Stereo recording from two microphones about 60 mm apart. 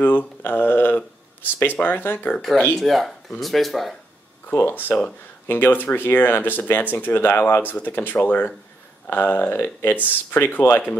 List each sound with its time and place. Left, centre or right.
0.0 s speech: left
2.8 s speech: centre
4.5 s speech: left